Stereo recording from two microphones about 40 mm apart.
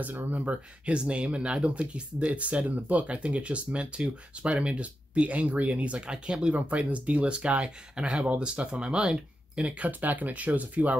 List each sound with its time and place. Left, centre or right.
0.8 s speech: right
6.0 s speech: right